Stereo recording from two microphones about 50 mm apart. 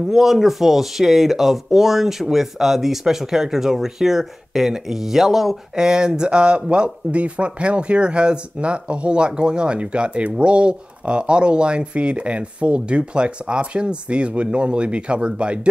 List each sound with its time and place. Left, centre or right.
0.1 s speech: centre; by 15.7 s right